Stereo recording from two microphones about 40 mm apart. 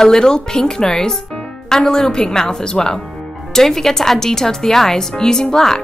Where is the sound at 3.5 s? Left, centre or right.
Centre.